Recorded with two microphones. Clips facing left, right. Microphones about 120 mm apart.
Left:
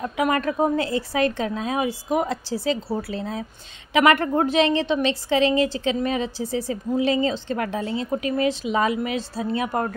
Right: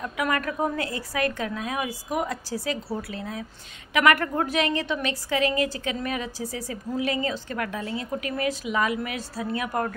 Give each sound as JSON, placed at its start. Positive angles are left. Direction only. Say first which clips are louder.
{"t": 0.0, "sound": "a woman's voice", "louder": "left 5 dB", "side_deg": 25}